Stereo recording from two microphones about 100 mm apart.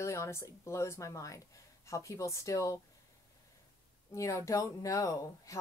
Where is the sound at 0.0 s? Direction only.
30° left (ahead or behind).